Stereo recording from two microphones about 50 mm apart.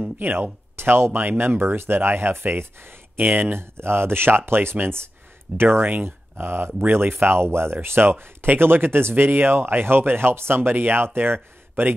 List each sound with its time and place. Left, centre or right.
0.2 s speech: right
3.2 s speech: right
3.7 s speech: right